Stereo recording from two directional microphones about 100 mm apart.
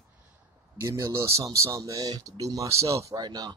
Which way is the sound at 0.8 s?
30° right (ahead or behind).